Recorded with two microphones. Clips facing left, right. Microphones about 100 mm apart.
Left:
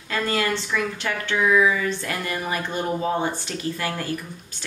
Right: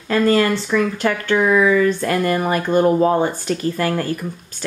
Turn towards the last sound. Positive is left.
turn(degrees=-45)  # may be behind; listen again after turning